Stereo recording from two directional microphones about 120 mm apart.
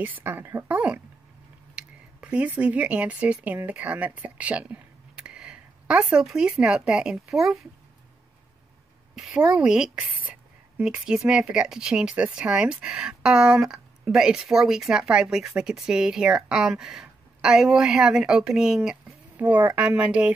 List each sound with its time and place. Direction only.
0.0 s speech: 15° right (ahead or behind)
9.1 s a woman's voice: 5° right (ahead or behind)